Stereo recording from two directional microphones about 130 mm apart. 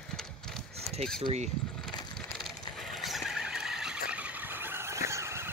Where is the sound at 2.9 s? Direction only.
Centre (ahead or behind).